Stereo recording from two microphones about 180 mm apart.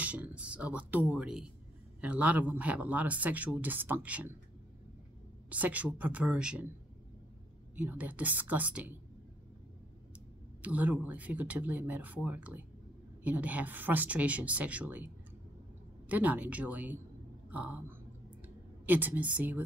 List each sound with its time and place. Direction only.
0.0 s speech: 5° right (ahead or behind)
5.5 s speech: 10° right (ahead or behind)
7.7 s speech: 10° right (ahead or behind)
10.6 s speech: 10° right (ahead or behind)
16.1 s speech: 10° right (ahead or behind)